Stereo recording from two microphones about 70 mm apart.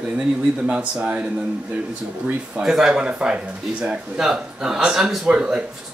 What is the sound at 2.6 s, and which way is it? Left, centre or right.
Speech, centre.